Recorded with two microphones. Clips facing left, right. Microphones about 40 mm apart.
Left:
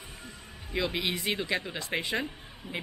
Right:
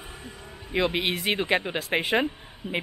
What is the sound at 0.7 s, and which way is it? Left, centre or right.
Speech, right.